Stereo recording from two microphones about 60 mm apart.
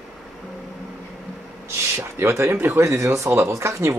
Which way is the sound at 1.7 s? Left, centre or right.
Right.